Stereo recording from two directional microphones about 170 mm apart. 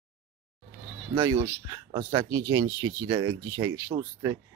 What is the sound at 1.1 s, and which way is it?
Speech, 25° right (ahead or behind).